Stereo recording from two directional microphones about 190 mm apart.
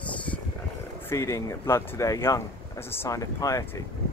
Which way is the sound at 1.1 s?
15° left (ahead or behind).